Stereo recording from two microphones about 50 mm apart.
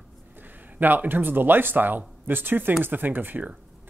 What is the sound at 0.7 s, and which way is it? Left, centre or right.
Speech, right.